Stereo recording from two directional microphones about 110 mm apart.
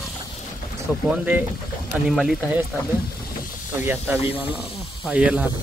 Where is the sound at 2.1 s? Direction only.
Centre (ahead or behind).